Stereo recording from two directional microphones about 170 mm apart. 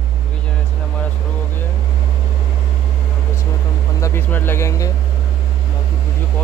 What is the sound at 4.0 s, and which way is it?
Speech, 15° left (ahead or behind).